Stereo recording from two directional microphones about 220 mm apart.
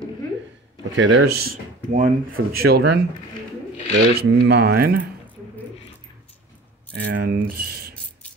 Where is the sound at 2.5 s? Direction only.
45° right (ahead or behind).